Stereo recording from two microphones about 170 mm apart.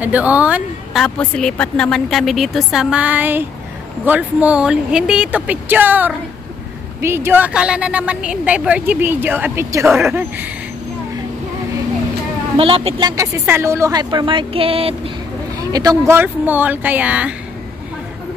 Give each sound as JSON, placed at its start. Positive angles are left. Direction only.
{"t": 0.0, "sound": "a woman's voice", "side_deg": -10}
{"t": 1.0, "sound": "a woman's voice", "side_deg": 5}
{"t": 12.5, "sound": "a woman's voice", "side_deg": -30}
{"t": 13.1, "sound": "speech", "side_deg": -20}
{"t": 15.7, "sound": "a woman's voice", "side_deg": -20}